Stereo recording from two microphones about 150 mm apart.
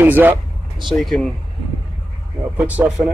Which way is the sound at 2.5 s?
10° right (ahead or behind).